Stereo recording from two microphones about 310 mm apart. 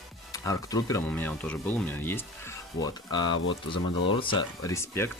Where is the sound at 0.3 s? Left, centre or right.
Centre.